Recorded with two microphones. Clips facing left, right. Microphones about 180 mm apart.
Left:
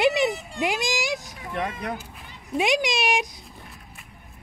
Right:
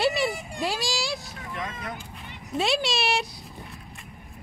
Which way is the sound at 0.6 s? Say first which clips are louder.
Left 3 dB; 20° left (ahead or behind).